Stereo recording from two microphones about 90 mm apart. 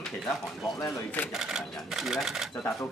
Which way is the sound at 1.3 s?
5° right (ahead or behind).